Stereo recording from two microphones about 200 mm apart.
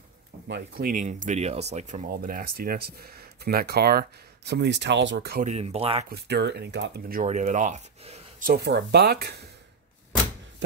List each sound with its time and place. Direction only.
0.5 s speech: 50° right (ahead or behind)
2.0 s speech: 45° right (ahead or behind)
5.4 s speech: 35° right (ahead or behind)
6.0 s speech: 55° right (ahead or behind)
7.2 s speech: 35° right (ahead or behind)
8.5 s speech: 55° right (ahead or behind)